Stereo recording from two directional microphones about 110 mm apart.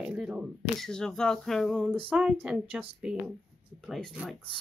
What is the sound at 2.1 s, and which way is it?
A woman's voice, 10° right (ahead or behind).